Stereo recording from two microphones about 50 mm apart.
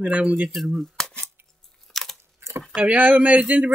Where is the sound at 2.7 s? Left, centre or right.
Right.